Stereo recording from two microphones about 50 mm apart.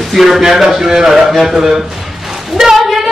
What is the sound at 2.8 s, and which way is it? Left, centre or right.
Female singing, centre.